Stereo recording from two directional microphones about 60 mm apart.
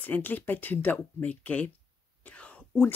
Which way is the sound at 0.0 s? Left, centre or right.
Left.